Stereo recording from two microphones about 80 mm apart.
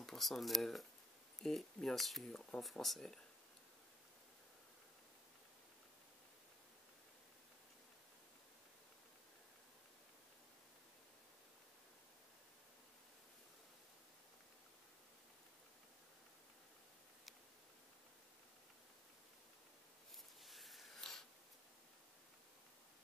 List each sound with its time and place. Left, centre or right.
0.0 s speech: centre
20.4 s wheeze: centre